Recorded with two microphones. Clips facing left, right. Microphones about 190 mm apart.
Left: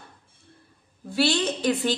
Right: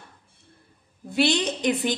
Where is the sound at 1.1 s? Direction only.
20° right (ahead or behind).